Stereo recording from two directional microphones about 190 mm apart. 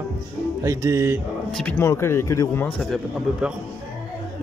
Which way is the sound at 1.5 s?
5° left (ahead or behind).